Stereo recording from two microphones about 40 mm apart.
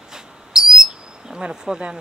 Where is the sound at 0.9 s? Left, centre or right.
Centre.